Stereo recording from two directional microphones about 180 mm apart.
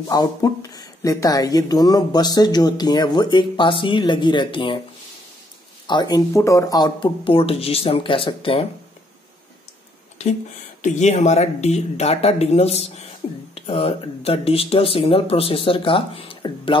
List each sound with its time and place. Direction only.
0.1 s speech: 20° left (ahead or behind)
5.9 s speech: 25° left (ahead or behind)
10.8 s speech: 40° left (ahead or behind)